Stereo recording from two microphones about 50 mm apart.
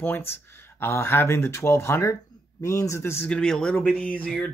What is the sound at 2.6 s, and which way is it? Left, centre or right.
Speech, left.